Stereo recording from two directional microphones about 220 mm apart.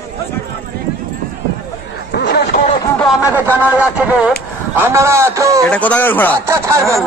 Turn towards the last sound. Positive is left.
turn(degrees=-15)  # may be behind; listen again after turning